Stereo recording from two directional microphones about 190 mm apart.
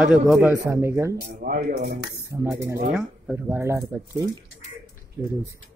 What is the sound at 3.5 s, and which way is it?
Speech, 15° right (ahead or behind).